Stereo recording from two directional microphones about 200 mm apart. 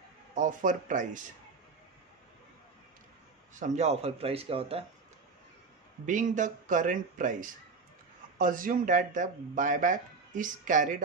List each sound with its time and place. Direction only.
0.3 s speech: 40° right (ahead or behind)
3.5 s speech: 35° right (ahead or behind)
6.0 s speech: 40° right (ahead or behind)